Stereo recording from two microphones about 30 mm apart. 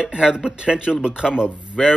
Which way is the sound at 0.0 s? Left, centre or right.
Right.